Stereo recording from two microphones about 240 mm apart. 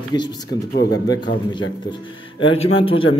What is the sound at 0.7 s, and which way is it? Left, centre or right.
Speech, left.